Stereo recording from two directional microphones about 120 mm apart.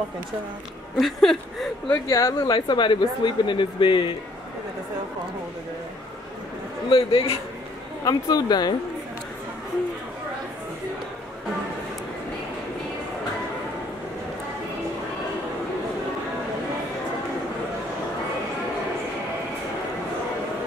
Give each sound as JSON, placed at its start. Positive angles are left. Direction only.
{"t": 0.9, "sound": "speech", "side_deg": 5}
{"t": 2.0, "sound": "speech", "side_deg": 25}
{"t": 2.4, "sound": "speech", "side_deg": 40}
{"t": 6.9, "sound": "a man's voice", "side_deg": 50}
{"t": 8.0, "sound": "speech", "side_deg": 35}